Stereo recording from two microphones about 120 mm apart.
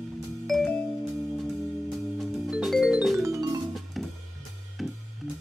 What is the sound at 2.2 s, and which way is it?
Music, centre (ahead or behind).